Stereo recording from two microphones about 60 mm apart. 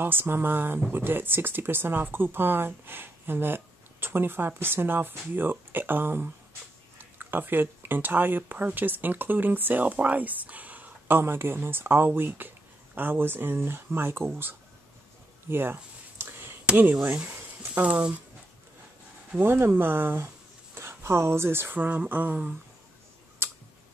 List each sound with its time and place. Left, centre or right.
0.0 s speech: right
11.1 s speech: right
15.4 s a sound: right
17.8 s speech: right
19.4 s speech: right
23.4 s tick: right